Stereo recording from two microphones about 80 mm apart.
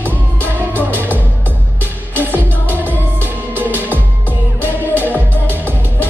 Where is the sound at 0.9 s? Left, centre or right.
Right.